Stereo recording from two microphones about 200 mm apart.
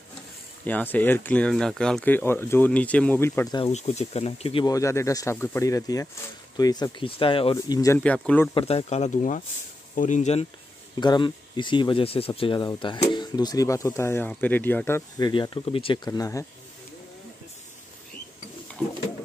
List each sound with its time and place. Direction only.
0.7 s speech: 10° left (ahead or behind)
3.5 s speech: 30° left (ahead or behind)
4.7 s speech: 15° left (ahead or behind)
8.5 s speech: 30° left (ahead or behind)
11.0 s speech: 20° left (ahead or behind)